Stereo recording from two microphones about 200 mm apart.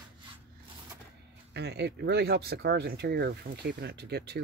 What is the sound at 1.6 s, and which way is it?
Speech, 55° right (ahead or behind).